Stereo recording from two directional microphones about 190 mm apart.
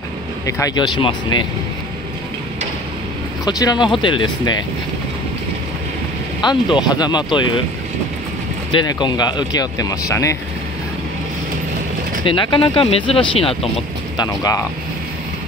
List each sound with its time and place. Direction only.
0.5 s speech: 20° left (ahead or behind)
3.4 s speech: 20° left (ahead or behind)
6.4 s speech: 25° left (ahead or behind)
8.7 s speech: 25° left (ahead or behind)
12.3 s speech: 25° left (ahead or behind)
14.2 s speech: 20° left (ahead or behind)